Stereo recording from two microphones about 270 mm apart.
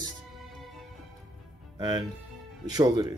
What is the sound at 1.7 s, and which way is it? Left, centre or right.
Speech, centre.